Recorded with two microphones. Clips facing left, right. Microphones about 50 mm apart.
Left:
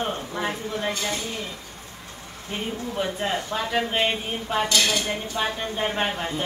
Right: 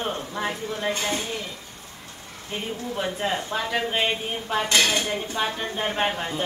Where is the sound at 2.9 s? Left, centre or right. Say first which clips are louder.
Even; centre.